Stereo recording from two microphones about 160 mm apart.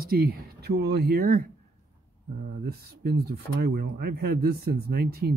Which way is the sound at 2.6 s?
80° right.